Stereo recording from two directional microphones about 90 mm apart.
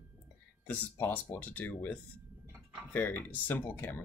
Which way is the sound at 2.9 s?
20° left (ahead or behind).